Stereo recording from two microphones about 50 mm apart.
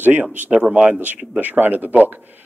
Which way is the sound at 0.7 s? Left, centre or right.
Right.